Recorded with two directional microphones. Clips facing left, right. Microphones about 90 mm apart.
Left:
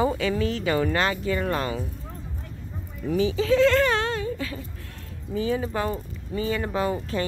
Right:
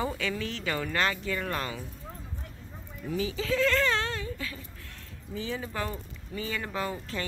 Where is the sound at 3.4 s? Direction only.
65° left (ahead or behind).